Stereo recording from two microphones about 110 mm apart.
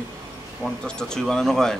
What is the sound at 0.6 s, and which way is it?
Speech, 5° left (ahead or behind).